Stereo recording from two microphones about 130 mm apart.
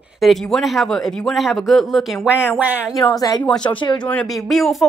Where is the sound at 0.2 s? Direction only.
Centre (ahead or behind).